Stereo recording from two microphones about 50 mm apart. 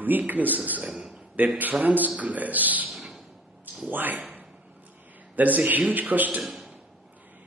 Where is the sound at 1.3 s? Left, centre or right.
Right.